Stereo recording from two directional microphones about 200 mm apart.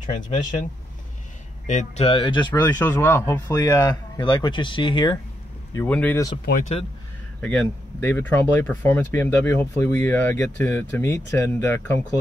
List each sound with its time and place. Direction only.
0.0 s speech: 40° left (ahead or behind)
1.7 s speech: 35° left (ahead or behind)
2.6 s speech: 10° left (ahead or behind)
5.9 s speech: 10° left (ahead or behind)
7.4 s speech: 5° left (ahead or behind)